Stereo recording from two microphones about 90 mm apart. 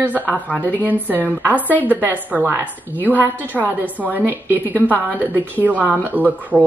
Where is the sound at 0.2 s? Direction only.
15° left (ahead or behind).